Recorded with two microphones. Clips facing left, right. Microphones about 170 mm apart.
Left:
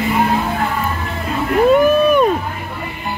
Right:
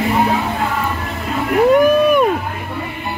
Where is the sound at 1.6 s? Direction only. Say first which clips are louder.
Even; 15° right (ahead or behind).